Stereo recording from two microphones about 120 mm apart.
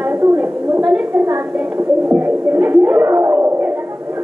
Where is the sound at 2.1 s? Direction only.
10° right (ahead or behind).